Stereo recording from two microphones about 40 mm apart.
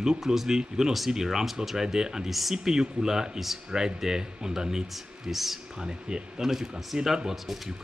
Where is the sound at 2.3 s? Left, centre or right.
Centre.